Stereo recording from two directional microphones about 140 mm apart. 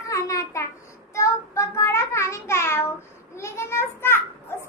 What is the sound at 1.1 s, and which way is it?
Child singing, 20° left (ahead or behind).